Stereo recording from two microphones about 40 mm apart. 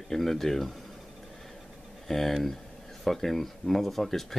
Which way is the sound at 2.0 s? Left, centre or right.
Centre.